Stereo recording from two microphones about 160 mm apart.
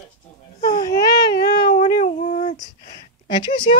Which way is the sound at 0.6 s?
55° left (ahead or behind).